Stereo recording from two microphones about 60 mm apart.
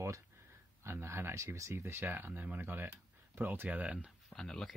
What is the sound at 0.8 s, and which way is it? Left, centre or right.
Speech, right.